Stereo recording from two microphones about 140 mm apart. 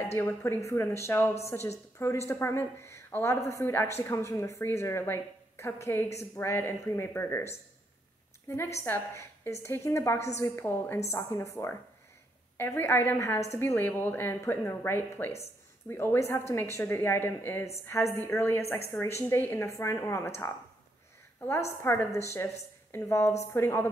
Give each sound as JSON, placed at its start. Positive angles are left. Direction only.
{"t": 0.0, "sound": "a woman's voice", "side_deg": 15}
{"t": 8.7, "sound": "a woman's voice", "side_deg": 20}
{"t": 21.8, "sound": "a woman's voice", "side_deg": 15}